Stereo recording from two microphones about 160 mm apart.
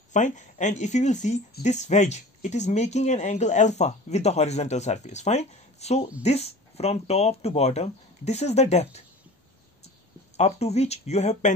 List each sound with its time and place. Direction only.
0.1 s speech: 50° left (ahead or behind)
10.3 s speech: 40° left (ahead or behind)